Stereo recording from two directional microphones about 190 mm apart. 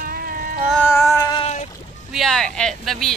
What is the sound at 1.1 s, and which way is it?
Speech, 20° left (ahead or behind).